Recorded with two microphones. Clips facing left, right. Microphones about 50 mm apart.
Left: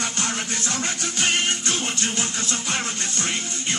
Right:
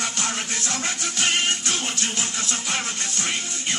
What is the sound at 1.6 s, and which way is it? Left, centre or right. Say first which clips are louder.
Music: left 1 dB; left.